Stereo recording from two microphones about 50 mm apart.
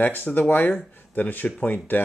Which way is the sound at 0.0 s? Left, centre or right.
Left.